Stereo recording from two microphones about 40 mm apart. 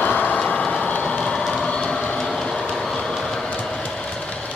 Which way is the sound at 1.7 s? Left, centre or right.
Left.